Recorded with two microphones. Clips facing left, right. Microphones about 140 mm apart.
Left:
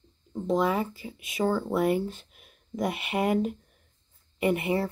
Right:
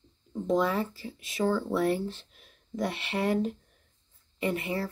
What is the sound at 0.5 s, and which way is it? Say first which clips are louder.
Speech: left 1 dB; 10° left (ahead or behind).